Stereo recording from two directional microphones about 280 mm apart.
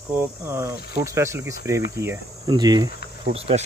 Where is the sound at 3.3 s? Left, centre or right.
Right.